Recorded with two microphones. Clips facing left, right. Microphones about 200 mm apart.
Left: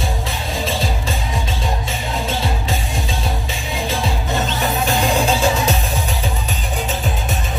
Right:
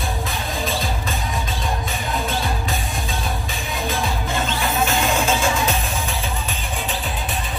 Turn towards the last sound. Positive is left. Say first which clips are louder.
# left 3 dB
turn(degrees=35)  # may be behind; listen again after turning